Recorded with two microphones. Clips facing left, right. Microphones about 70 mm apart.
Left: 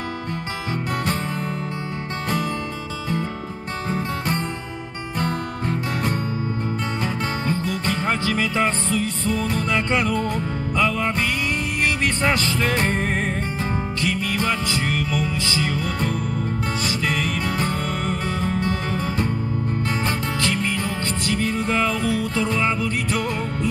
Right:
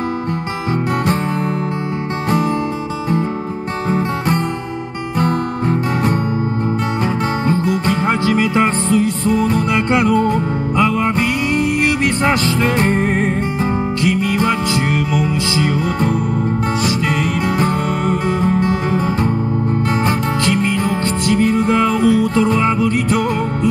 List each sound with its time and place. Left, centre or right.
5.2 s music: centre
7.4 s music: centre
8.6 s music: right
9.0 s music: centre
17.6 s music: centre
20.1 s music: centre